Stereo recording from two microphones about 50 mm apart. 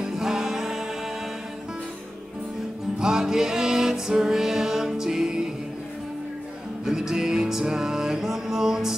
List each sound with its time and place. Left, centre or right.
0.0 s music: centre
3.0 s music: centre
6.8 s music: centre